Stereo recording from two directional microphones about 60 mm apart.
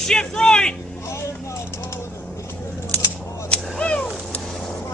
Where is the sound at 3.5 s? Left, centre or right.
Centre.